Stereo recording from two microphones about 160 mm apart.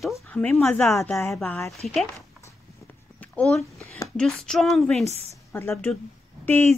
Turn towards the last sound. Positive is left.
turn(degrees=15)  # may be behind; listen again after turning